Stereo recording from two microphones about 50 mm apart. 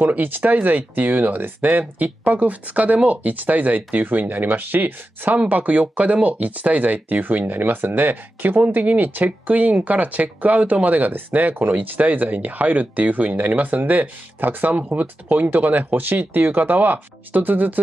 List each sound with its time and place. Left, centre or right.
0.0 s speech: right